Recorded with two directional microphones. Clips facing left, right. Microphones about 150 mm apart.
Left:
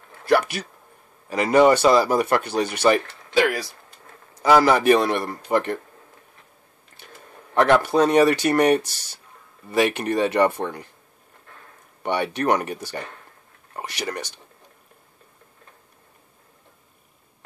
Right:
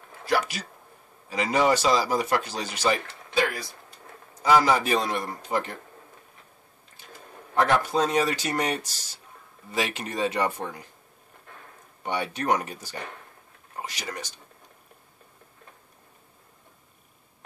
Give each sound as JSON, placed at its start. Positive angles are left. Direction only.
{"t": 0.2, "sound": "speech", "side_deg": 60}
{"t": 3.3, "sound": "speech", "side_deg": 80}
{"t": 4.4, "sound": "speech", "side_deg": 70}
{"t": 7.0, "sound": "a sound", "side_deg": 65}
{"t": 7.5, "sound": "speech", "side_deg": 65}
{"t": 12.0, "sound": "speech", "side_deg": 65}